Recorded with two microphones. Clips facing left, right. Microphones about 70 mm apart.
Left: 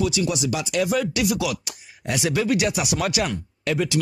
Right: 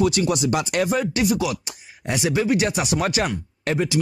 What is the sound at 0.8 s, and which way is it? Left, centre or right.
Speech, right.